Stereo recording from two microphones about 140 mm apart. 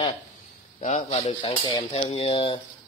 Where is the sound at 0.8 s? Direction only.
55° left (ahead or behind).